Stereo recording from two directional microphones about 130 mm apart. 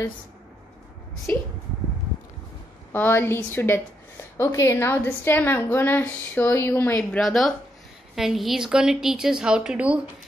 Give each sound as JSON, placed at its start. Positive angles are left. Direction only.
{"t": 2.9, "sound": "a woman's voice", "side_deg": 15}
{"t": 7.0, "sound": "a woman's voice", "side_deg": 0}